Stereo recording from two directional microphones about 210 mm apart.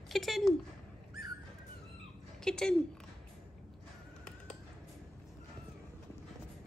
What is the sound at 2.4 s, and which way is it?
Speech, 5° left (ahead or behind).